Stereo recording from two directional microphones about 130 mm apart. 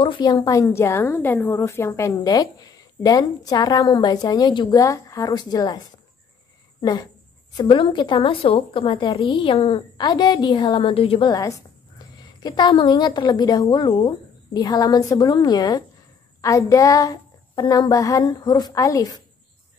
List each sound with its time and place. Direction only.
0.0 s a woman's voice: 35° left (ahead or behind)
6.8 s a woman's voice: 30° left (ahead or behind)
7.5 s a woman's voice: 40° left (ahead or behind)
9.9 s a woman's voice: 30° left (ahead or behind)